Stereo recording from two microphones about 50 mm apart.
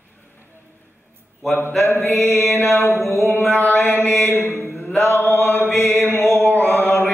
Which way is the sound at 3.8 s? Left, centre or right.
Left.